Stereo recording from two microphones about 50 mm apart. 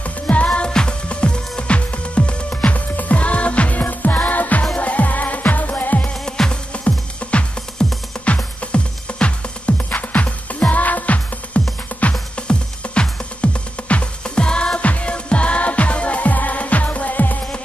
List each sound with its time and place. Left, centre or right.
0.0 s music: left
6.0 s music: centre
6.7 s music: left
8.7 s music: left
14.8 s music: left